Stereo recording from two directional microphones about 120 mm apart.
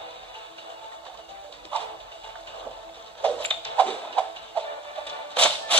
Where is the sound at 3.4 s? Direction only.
50° right (ahead or behind).